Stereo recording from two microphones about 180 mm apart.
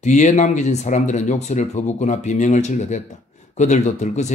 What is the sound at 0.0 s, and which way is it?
Speech, 40° left (ahead or behind).